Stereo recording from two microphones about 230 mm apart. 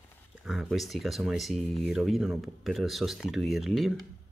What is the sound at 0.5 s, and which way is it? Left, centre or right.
Speech, centre.